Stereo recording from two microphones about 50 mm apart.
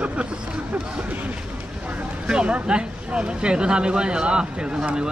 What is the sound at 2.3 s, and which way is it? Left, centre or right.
Speech, centre.